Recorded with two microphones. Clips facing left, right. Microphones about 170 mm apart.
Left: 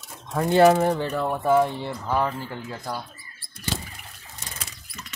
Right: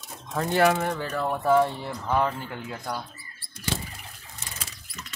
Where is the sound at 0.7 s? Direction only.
35° left (ahead or behind).